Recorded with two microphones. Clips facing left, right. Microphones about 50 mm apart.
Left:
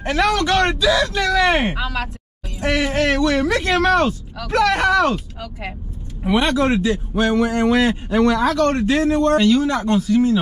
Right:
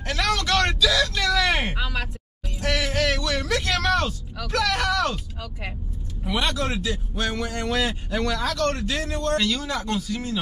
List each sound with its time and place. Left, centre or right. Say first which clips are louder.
0.0 s speech: left 7 dB; left
1.8 s speech: left 5 dB; centre
2.6 s a sound: left 5 dB; left
4.5 s a man's voice: left 7 dB; left